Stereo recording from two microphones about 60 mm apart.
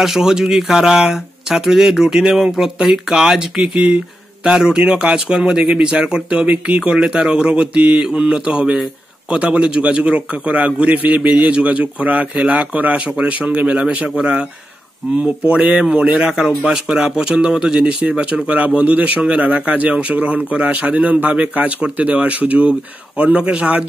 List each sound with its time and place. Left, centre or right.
0.0 s speech: centre